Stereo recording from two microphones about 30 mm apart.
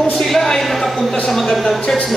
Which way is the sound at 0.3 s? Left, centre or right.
Centre.